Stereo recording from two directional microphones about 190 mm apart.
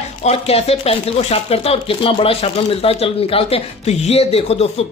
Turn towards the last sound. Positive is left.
turn(degrees=30)  # may be behind; listen again after turning